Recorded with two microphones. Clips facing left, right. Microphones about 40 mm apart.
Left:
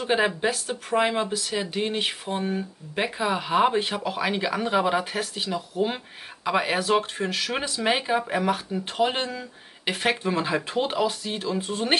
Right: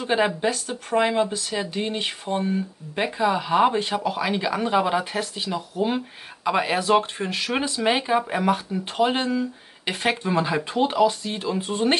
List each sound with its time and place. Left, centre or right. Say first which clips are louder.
0.0 s speech: right 1 dB; centre
6.9 s speech: right 3 dB; right
7.5 s speech: right 4 dB; centre
11.3 s speech: right 1 dB; centre
11.6 s speech: right 4 dB; right